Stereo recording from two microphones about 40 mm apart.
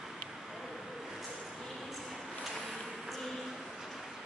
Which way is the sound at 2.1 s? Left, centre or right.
Centre.